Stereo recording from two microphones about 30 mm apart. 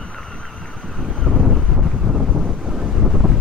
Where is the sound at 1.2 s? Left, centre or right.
Centre.